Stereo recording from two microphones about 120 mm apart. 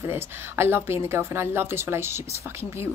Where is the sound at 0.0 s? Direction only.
20° right (ahead or behind).